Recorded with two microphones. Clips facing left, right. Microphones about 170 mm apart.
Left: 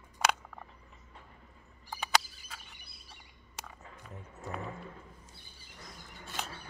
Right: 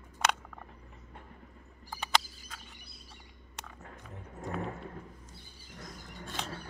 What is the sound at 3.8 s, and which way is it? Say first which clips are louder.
Roaring cats: right 1 dB; 50° right (ahead or behind).